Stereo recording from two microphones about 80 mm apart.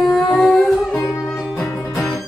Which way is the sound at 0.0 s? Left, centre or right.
Centre.